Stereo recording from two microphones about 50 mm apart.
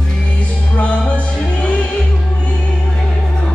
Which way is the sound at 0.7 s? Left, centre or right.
Left.